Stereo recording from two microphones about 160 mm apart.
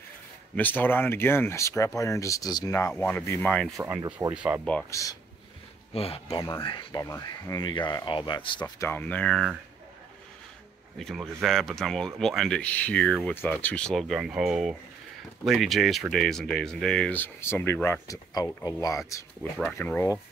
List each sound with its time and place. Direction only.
0.6 s speech: 10° left (ahead or behind)
2.9 s speech: 10° left (ahead or behind)
4.3 s speech: 10° right (ahead or behind)
5.0 s speech: 20° left (ahead or behind)
5.9 s speech: 35° left (ahead or behind)
8.6 s speech: 20° left (ahead or behind); by 9.6 s 5° left (ahead or behind)
11.0 s speech: centre (ahead or behind); by 18.9 s 20° left (ahead or behind)
19.6 s speech: 10° left (ahead or behind)